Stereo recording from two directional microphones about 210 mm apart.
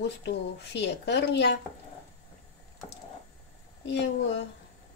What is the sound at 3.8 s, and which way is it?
Speech, 55° left (ahead or behind).